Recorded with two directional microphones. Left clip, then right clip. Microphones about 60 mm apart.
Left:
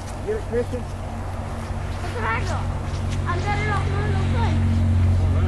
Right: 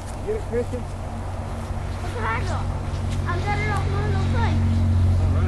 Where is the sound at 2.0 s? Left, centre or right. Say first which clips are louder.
Left 1 dB; left.